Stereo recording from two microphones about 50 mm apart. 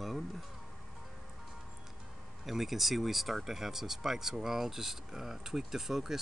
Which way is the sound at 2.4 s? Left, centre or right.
Centre.